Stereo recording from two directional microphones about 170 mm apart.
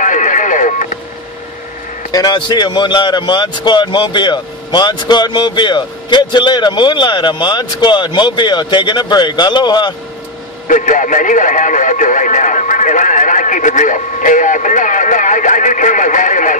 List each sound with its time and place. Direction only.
0.0 s radio: 50° left (ahead or behind)
2.1 s speech: 25° left (ahead or behind)
10.7 s speech: 50° left (ahead or behind)